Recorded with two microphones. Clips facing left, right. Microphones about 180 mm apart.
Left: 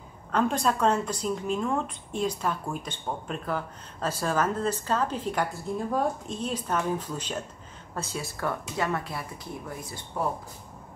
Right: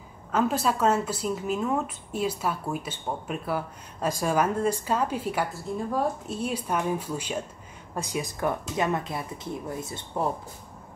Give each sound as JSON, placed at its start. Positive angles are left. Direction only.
{"t": 0.3, "sound": "speech", "side_deg": -5}